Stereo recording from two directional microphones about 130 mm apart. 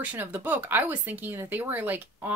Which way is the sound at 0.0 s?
15° right (ahead or behind).